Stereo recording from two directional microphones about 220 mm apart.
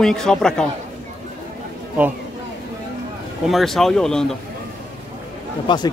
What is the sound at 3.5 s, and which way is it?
Speech, centre (ahead or behind).